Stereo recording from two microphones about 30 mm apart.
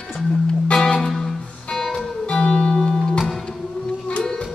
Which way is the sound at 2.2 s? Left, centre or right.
Left.